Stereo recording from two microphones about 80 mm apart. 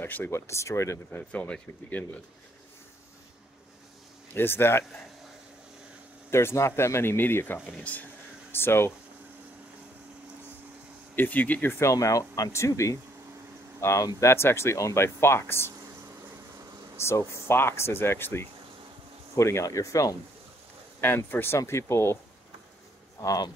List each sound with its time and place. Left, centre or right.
0.0 s speech: left
1.1 s speech: left
4.3 s speech: left
6.3 s speech: left
7.6 s speech: centre
11.1 s speech: left
11.9 s speech: left
16.9 s speech: left
21.3 s speech: left
23.2 s speech: left